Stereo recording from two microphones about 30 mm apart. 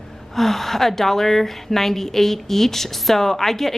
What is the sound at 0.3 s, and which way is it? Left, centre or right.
A woman's voice, centre.